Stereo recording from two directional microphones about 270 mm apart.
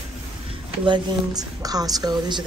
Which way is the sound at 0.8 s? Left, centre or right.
Centre.